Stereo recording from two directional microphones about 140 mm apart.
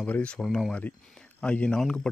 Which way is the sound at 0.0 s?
10° left (ahead or behind).